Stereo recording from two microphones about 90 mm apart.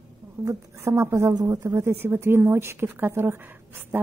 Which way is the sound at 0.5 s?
35° right (ahead or behind).